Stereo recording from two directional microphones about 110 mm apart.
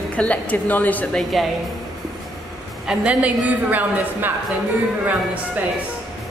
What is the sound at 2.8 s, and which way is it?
A woman's voice, 10° right (ahead or behind).